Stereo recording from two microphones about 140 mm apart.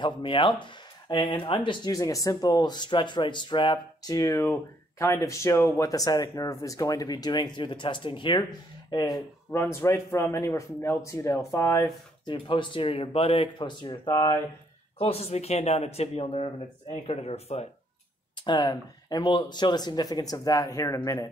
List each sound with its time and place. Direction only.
0.0 s speech: 35° left (ahead or behind)
12.3 s speech: 35° left (ahead or behind)
15.0 s speech: 45° left (ahead or behind)
18.4 s speech: 30° left (ahead or behind)